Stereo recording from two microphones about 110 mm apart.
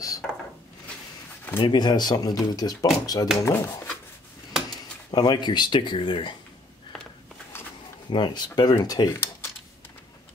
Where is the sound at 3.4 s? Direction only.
25° left (ahead or behind).